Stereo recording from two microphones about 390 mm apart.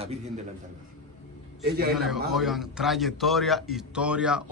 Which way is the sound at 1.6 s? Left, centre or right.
Right.